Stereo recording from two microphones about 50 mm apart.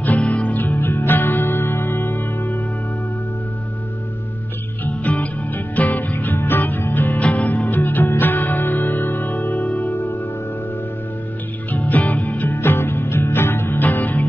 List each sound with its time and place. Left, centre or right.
0.2 s music: left
4.8 s music: left
11.7 s music: left
12.5 s music: left